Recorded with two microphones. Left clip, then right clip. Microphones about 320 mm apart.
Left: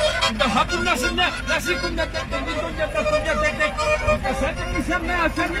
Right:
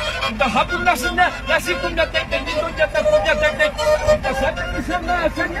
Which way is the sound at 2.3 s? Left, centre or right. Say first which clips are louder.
Right 4 dB; right.